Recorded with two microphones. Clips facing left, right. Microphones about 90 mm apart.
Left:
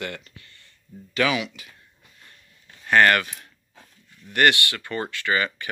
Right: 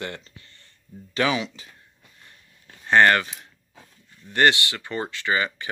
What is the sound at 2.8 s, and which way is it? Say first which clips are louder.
Speech: right 1 dB; 25° right (ahead or behind).